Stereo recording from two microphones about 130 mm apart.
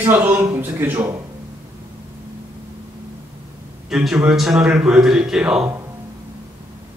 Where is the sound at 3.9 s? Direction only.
5° right (ahead or behind).